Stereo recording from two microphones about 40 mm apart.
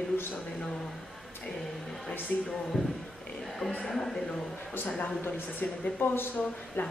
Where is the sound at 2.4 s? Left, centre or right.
Centre.